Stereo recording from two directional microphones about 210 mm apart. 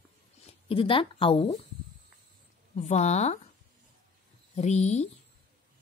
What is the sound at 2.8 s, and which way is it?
Speech, 35° left (ahead or behind).